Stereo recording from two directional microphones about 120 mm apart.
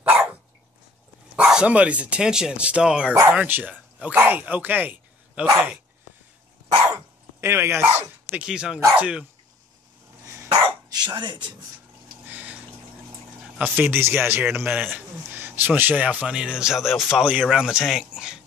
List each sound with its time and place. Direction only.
0.0 s dog: 10° right (ahead or behind)
1.3 s a man's voice: 5° right (ahead or behind)
6.9 s dog: 20° right (ahead or behind)
8.0 s a man's voice: 10° right (ahead or behind)
10.2 s dog: 25° right (ahead or behind)
10.9 s speech: 40° right (ahead or behind)
12.3 s water: 10° right (ahead or behind)
13.4 s a man's voice: 15° right (ahead or behind)